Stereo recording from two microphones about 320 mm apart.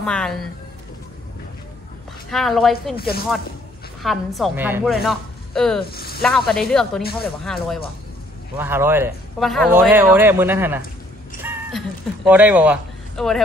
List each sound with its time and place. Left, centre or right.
0.0 s a woman's voice: centre
2.2 s a woman's voice: centre
4.0 s a woman's voice: centre
5.9 s speech: left
6.2 s a woman's voice: centre
11.4 s a sound: centre
12.3 s speech: centre